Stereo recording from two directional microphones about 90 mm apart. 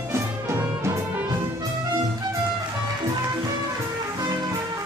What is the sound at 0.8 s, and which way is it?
Music, 30° right (ahead or behind).